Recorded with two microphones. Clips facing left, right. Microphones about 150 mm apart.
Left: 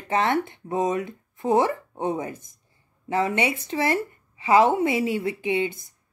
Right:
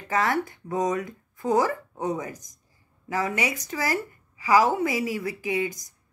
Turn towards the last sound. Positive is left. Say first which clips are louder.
# left 3 dB
turn(degrees=25)  # may be behind; listen again after turning